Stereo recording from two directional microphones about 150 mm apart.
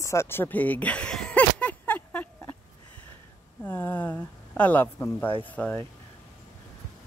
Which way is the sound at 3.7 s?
15° left (ahead or behind).